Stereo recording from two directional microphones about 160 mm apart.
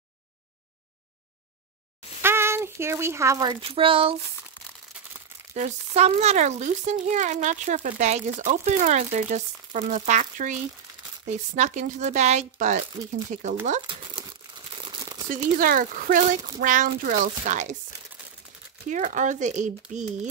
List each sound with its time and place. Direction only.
2.2 s speech: 15° right (ahead or behind); by 4.2 s 35° right (ahead or behind)
5.5 s speech: 45° right (ahead or behind)
13.8 s crumpling: 35° right (ahead or behind)
15.2 s speech: 55° right (ahead or behind)
18.9 s speech: 50° right (ahead or behind)